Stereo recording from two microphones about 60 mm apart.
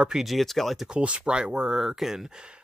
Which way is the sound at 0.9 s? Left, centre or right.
Centre.